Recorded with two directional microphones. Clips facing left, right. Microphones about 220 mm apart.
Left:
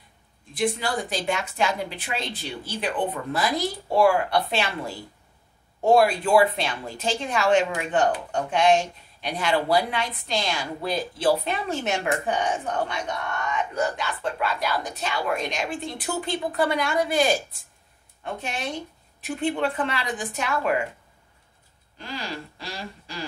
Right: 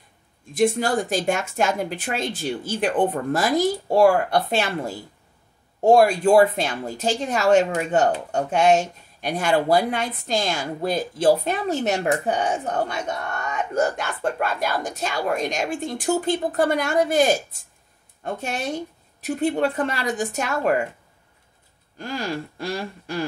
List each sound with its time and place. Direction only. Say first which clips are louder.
0.5 s speech: right 6 dB; 45° right (ahead or behind)
21.9 s speech: right 6 dB; 45° right (ahead or behind)